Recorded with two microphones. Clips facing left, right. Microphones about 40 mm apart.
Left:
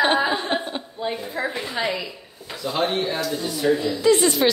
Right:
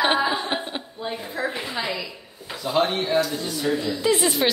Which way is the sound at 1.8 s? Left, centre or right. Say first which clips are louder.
Left 4 dB; centre.